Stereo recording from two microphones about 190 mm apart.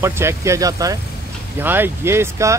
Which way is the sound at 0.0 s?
15° right (ahead or behind).